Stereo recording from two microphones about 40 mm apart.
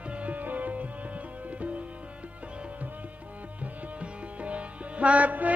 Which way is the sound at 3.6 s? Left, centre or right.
Right.